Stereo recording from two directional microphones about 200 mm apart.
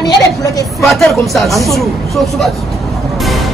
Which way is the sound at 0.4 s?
15° left (ahead or behind).